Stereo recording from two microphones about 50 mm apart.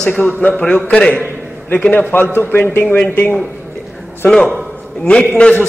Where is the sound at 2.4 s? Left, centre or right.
Left.